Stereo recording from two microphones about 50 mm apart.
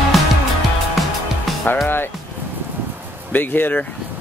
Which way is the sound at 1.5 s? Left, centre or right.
Centre.